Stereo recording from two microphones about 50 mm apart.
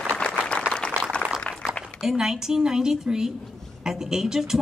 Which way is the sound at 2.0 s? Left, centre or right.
Centre.